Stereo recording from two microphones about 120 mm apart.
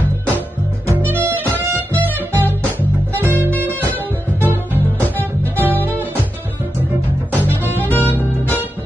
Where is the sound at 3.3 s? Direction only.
15° left (ahead or behind).